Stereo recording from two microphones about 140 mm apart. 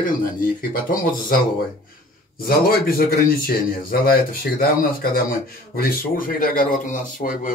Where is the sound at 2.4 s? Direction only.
90° left.